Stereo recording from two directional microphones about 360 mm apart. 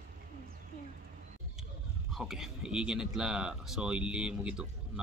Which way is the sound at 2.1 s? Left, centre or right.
Centre.